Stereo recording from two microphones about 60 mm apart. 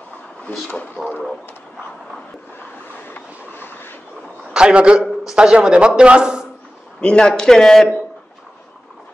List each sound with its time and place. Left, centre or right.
1.0 s speech: centre
3.1 s train: left
4.6 s speech: centre
7.0 s speech: centre